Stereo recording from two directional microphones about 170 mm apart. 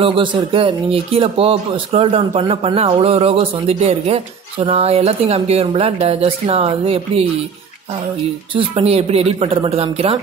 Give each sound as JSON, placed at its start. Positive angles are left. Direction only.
{"t": 0.0, "sound": "speech", "side_deg": -30}
{"t": 8.5, "sound": "speech", "side_deg": -35}